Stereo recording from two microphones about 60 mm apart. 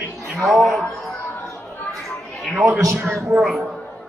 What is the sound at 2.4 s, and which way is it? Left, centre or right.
A man's voice, centre.